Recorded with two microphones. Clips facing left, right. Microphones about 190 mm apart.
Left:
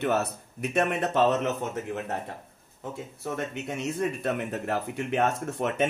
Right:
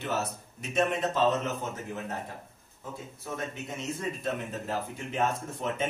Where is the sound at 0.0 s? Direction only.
60° left (ahead or behind).